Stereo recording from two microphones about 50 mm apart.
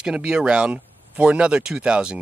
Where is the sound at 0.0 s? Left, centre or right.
Centre.